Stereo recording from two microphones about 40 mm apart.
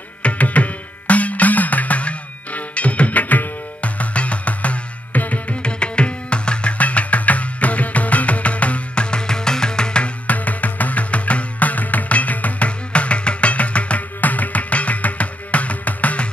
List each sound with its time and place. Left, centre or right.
0.2 s music: left
5.6 s music: left
10.2 s music: left